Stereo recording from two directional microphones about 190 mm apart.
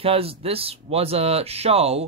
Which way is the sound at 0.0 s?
30° right (ahead or behind).